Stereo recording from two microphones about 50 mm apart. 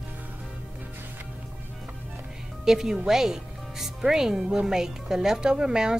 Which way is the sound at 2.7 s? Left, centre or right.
Centre.